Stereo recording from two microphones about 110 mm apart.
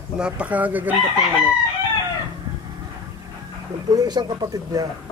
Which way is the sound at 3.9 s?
40° right (ahead or behind).